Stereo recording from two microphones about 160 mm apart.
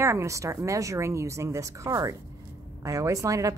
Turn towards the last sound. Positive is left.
turn(degrees=-20)  # may be behind; listen again after turning